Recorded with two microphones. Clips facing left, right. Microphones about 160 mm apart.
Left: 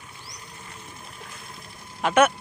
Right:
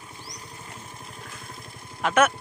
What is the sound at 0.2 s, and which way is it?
Vehicle, 35° right (ahead or behind).